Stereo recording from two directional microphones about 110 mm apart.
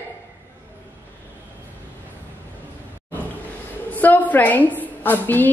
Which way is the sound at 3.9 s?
15° left (ahead or behind).